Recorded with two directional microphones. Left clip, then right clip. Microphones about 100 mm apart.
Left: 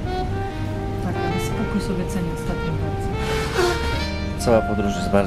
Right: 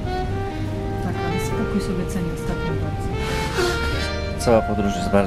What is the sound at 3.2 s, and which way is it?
Music, 25° left (ahead or behind).